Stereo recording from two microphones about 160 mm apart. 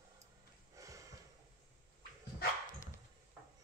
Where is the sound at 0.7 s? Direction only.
20° right (ahead or behind).